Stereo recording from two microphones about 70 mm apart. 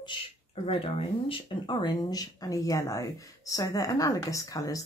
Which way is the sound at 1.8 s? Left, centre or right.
Left.